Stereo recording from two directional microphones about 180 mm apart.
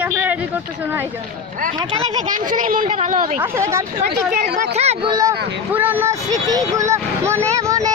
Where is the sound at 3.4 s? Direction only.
15° right (ahead or behind).